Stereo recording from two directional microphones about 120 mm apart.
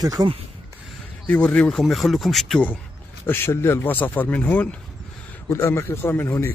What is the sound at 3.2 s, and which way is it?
Speech, 20° left (ahead or behind).